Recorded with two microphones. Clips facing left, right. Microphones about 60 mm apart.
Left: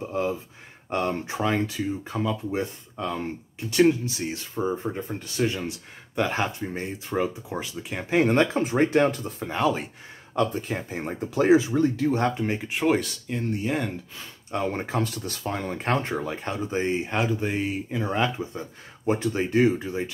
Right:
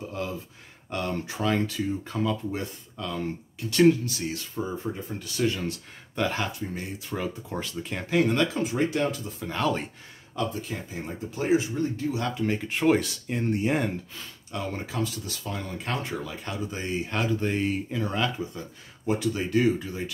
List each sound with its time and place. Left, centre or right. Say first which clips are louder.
0.0 s speech: left 6 dB; left
2.0 s speech: even; centre
2.5 s speech: left 5 dB; left
7.2 s speech: left 2 dB; centre
8.1 s speech: left 3 dB; left
9.5 s speech: left 3 dB; centre
10.3 s speech: left 5 dB; left
11.2 s speech: left 6 dB; left
12.1 s speech: left 5 dB; left
12.4 s speech: right 1 dB; centre
13.4 s speech: right 2 dB; centre
14.5 s speech: left 6 dB; left; by 17.9 s centre
17.9 s speech: left 2 dB; left